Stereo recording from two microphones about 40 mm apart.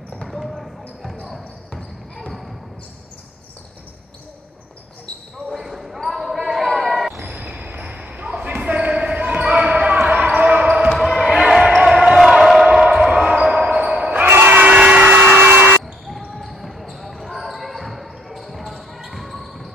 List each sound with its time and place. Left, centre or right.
0.2 s basketball bounce: centre
2.1 s basketball bounce: centre
5.7 s basketball bounce: centre
7.2 s a sound: right
7.8 s basketball bounce: right
10.9 s basketball bounce: centre
11.8 s basketball bounce: centre
12.2 s crowd: centre
12.7 s basketball bounce: centre; by 14.1 s right
14.1 s basketball bounce: right
14.6 s a sound: right
15.1 s hair dryer: right
16.3 s basketball bounce: centre